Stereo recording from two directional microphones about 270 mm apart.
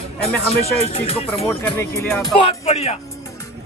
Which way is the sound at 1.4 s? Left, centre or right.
Centre.